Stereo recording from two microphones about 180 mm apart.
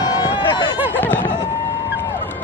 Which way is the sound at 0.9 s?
10° left (ahead or behind).